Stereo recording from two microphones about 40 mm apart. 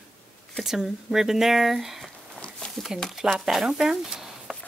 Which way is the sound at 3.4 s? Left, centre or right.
Centre.